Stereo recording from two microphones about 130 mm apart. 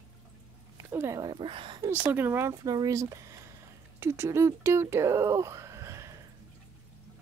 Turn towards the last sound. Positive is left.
turn(degrees=-25)  # may be behind; listen again after turning